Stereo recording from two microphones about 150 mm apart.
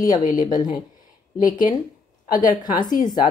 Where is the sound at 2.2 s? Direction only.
65° left (ahead or behind).